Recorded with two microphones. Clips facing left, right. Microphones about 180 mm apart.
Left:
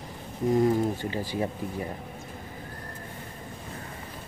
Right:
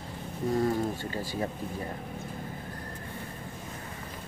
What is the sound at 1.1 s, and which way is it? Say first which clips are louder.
Speech: left 3 dB; 45° right (ahead or behind).